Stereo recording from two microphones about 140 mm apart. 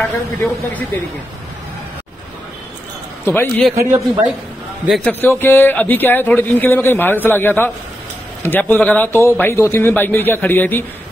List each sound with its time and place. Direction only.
3.3 s speech: 15° left (ahead or behind)
3.7 s speech: 20° right (ahead or behind)
5.0 s speech: 15° left (ahead or behind)